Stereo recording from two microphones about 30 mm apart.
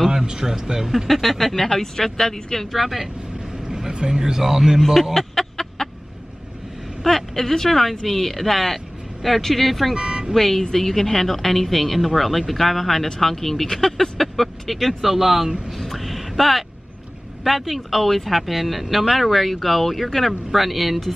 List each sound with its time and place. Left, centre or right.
0.1 s speech: right
1.0 s speech: centre
1.6 s speech: centre
2.7 s speech: centre
3.6 s vehicle: right
4.2 s speech: centre
5.1 s a sound: centre
7.1 s speech: centre
9.9 s vehicle: right
10.3 s speech: centre
15.8 s a sound: centre
17.4 s speech: centre